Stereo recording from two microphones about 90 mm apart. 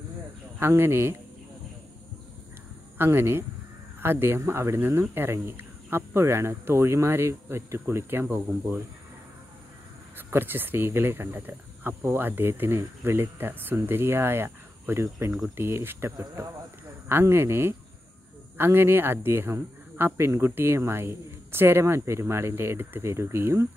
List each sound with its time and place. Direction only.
0.6 s speech: 25° right (ahead or behind)
3.0 s speech: 25° right (ahead or behind)
10.1 s speech: 25° right (ahead or behind)